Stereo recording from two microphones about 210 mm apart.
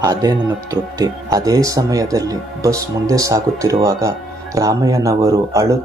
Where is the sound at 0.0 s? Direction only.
15° right (ahead or behind).